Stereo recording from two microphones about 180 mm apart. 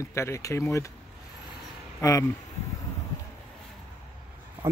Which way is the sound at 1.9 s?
20° left (ahead or behind).